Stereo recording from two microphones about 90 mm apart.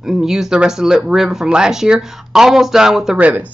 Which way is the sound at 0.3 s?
5° right (ahead or behind).